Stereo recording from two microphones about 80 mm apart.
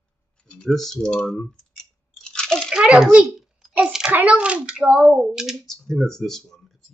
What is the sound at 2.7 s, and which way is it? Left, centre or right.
Child singing, centre.